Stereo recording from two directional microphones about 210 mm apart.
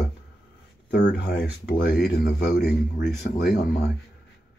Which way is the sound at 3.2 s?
50° left (ahead or behind).